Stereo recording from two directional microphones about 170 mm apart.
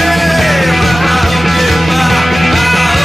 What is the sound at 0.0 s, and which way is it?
Music, centre (ahead or behind).